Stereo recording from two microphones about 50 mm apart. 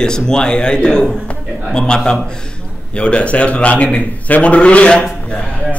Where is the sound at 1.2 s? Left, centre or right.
Left.